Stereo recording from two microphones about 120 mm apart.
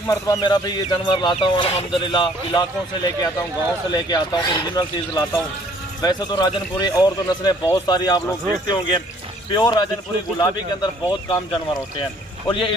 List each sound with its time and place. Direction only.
0.0 s speech: 30° left (ahead or behind)
12.4 s speech: 45° left (ahead or behind)